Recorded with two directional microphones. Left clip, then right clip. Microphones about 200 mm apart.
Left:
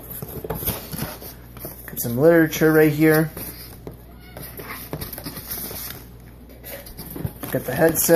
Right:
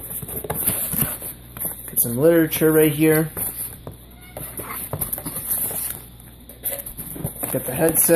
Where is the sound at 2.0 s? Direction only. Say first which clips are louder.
Left 1 dB; 5° left (ahead or behind).